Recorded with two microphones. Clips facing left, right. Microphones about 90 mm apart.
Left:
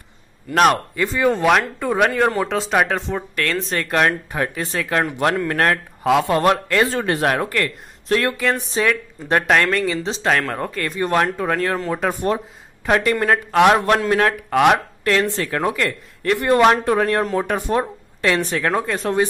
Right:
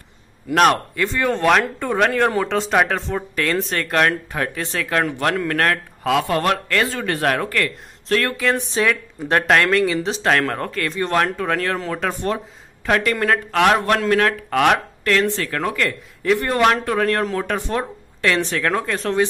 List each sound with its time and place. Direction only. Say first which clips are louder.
0.6 s speech: even; 5° left (ahead or behind)
8.4 s speech: even; centre (ahead or behind)
15.9 s a man's voice: right 2 dB; centre (ahead or behind)
16.3 s speech: left 5 dB; 15° left (ahead or behind)